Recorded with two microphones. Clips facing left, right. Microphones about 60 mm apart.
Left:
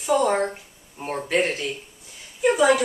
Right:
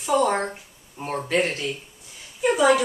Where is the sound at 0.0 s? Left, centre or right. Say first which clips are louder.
Left 1 dB; centre.